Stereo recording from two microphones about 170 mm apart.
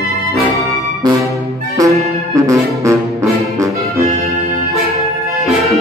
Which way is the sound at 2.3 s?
20° right (ahead or behind).